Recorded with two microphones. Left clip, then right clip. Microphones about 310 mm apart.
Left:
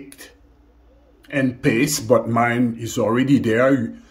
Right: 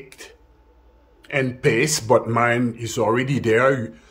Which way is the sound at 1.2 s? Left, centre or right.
Centre.